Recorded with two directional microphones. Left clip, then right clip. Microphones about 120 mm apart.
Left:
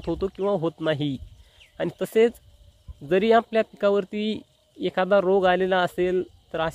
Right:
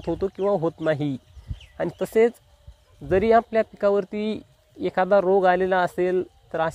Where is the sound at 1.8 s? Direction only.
35° left (ahead or behind).